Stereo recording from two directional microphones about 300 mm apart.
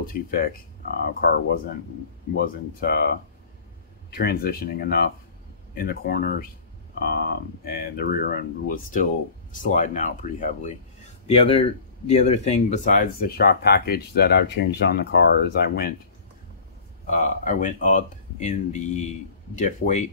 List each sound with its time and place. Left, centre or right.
0.0 s speech: left
17.0 s speech: left